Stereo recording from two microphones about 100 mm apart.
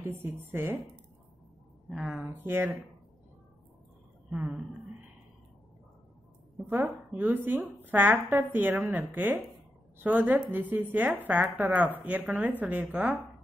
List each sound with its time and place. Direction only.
0.0 s a woman's voice: 20° right (ahead or behind)
1.9 s speech: 5° right (ahead or behind)
2.4 s a woman's voice: 20° right (ahead or behind)
4.3 s speech: 10° right (ahead or behind)
6.7 s a woman's voice: 15° right (ahead or behind)